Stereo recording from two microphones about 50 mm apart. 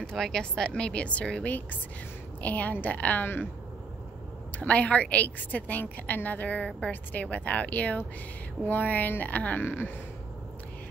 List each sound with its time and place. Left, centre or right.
0.1 s a woman's voice: centre; by 3.3 s left
4.6 s a woman's voice: left